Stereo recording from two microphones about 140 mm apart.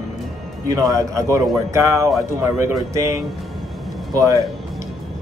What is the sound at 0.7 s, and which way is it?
Speech, 25° right (ahead or behind).